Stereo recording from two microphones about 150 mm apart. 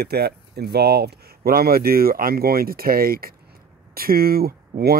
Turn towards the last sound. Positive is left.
turn(degrees=-90)